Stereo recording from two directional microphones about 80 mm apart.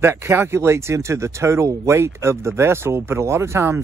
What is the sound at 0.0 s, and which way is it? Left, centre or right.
Speech, right.